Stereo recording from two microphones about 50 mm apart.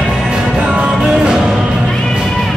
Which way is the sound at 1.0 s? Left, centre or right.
Centre.